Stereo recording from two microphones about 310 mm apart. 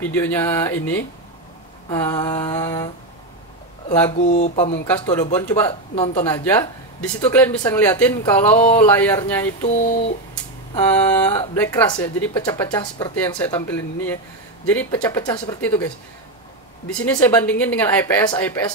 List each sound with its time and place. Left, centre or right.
0.1 s speech: centre
4.2 s speech: left
6.2 s speech: centre
9.6 s speech: left
11.1 s speech: centre
17.0 s a woman's voice: centre